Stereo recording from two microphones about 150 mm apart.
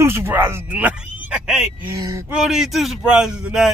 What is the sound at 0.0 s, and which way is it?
Speech, 15° right (ahead or behind).